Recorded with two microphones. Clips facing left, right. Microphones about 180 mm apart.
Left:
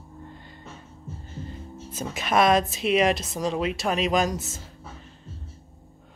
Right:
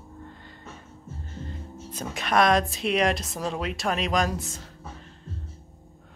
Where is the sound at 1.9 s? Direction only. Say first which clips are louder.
Left 1 dB; 5° left (ahead or behind).